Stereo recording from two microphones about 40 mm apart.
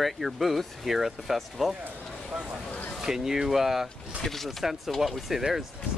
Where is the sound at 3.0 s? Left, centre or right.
Centre.